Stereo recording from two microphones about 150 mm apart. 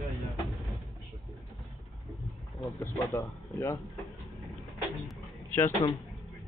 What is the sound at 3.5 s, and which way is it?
Speech, 20° left (ahead or behind).